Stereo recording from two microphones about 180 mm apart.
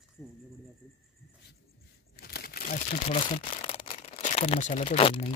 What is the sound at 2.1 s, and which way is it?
Crumpling, 60° left (ahead or behind).